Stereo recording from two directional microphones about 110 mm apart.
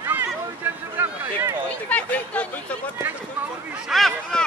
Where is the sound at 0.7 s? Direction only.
15° right (ahead or behind).